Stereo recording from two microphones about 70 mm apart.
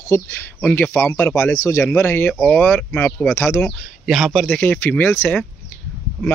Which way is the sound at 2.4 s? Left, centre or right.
Centre.